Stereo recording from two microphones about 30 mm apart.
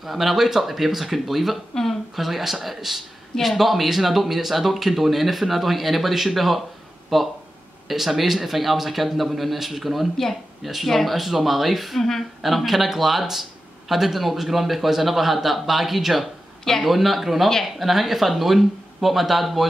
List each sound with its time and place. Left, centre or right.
0.0 s speech: centre
10.9 s speech: centre
11.1 s speech: centre